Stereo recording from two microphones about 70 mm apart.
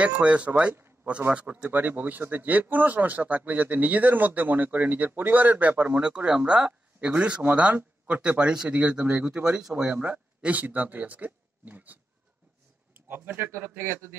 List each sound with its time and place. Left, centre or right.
0.0 s speech: centre